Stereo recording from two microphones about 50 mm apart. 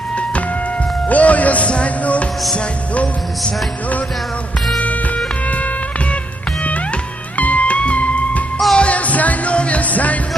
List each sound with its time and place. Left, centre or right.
1.0 s music: left
7.3 s music: left